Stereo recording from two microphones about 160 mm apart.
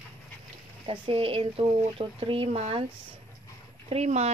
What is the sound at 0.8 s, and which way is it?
Speech, 35° right (ahead or behind).